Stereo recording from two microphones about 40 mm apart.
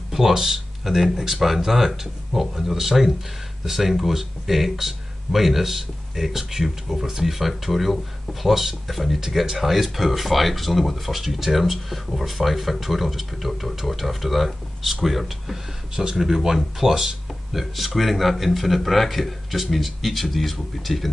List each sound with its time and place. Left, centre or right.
0.1 s speech: centre